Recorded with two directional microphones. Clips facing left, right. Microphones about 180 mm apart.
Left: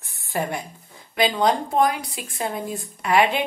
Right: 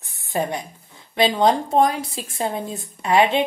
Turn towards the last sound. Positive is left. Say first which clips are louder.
# right 2 dB
turn(degrees=-25)  # may be behind; listen again after turning